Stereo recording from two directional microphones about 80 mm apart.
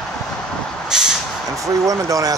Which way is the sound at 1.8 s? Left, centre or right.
Right.